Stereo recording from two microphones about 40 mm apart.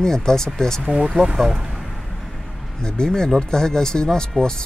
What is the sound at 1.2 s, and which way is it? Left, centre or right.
Speech, centre.